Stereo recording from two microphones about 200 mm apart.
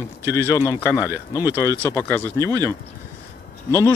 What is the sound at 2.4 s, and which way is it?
Speech, 15° right (ahead or behind).